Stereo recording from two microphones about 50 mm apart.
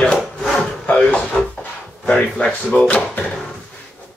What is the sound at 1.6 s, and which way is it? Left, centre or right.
Drawer open or close, left.